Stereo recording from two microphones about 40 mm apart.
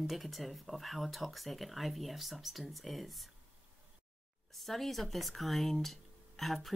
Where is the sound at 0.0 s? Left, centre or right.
Centre.